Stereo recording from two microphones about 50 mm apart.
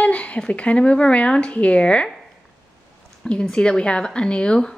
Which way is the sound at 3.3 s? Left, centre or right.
Centre.